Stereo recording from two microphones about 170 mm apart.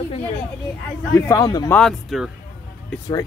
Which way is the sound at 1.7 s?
Centre (ahead or behind).